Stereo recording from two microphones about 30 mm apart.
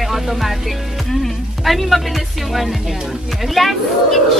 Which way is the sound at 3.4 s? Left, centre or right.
Centre.